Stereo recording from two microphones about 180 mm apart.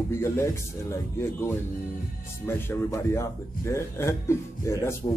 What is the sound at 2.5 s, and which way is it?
A man's voice, 15° left (ahead or behind).